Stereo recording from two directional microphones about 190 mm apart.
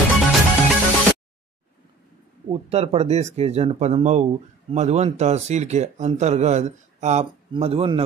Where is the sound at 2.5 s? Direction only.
30° right (ahead or behind).